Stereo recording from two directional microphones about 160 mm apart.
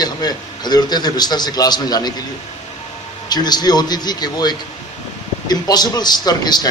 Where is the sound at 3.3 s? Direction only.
25° left (ahead or behind).